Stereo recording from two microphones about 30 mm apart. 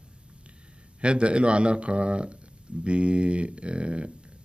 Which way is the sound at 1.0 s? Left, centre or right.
Right.